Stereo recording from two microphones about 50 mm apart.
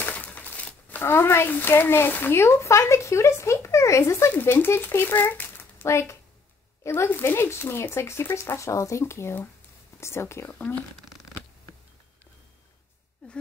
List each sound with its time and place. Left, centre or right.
0.0 s crumpling: left
1.0 s speech: left
2.3 s speech: left
4.3 s speech: left
5.9 s speech: left
7.2 s speech: left
8.5 s speech: left
10.5 s speech: left